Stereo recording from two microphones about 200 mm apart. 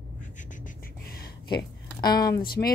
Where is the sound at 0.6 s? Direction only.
50° left (ahead or behind).